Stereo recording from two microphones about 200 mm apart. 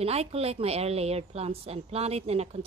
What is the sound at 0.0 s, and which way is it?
A woman's voice, 30° right (ahead or behind).